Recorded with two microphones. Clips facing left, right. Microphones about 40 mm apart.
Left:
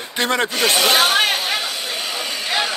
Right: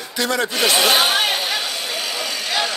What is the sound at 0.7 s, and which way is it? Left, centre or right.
Speech, centre.